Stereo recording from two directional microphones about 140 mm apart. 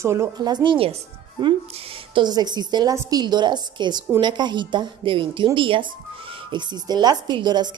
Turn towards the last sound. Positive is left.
turn(degrees=-30)  # may be behind; listen again after turning